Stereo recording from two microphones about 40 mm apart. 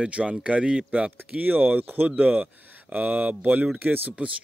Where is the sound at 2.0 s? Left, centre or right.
Right.